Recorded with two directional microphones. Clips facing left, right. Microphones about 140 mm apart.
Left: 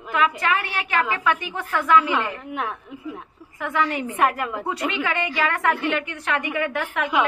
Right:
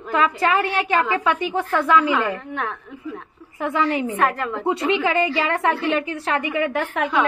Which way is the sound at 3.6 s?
30° right (ahead or behind).